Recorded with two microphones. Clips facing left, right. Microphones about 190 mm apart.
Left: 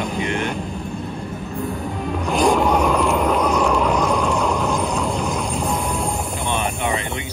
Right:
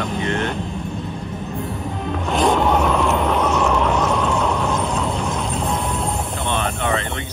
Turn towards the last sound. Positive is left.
turn(degrees=0)  # may be behind; listen again after turning